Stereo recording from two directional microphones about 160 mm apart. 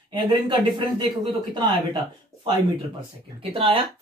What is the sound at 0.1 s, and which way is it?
Speech, 30° right (ahead or behind).